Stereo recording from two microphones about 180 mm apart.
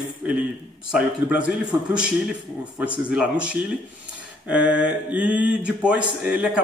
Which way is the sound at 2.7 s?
5° right (ahead or behind).